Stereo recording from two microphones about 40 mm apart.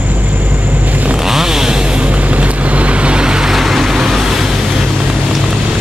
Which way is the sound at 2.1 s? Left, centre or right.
Right.